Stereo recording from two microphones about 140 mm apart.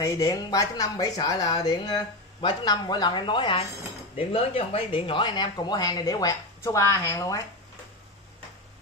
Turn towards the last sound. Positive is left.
turn(degrees=25)  # may be behind; listen again after turning